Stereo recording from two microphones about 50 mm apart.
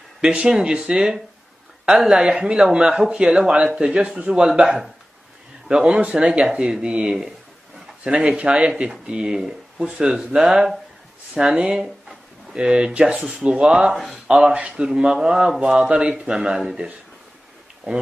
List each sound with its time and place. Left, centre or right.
0.2 s speech: centre
4.6 s speech: centre
11.5 s speech: centre
13.9 s speech: centre
14.2 s speech: right